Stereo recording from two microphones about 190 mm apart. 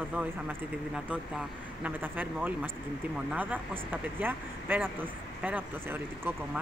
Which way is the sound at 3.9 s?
10° right (ahead or behind).